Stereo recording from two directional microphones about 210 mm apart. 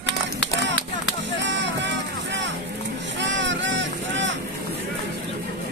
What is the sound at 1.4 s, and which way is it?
Vehicle, 60° right (ahead or behind).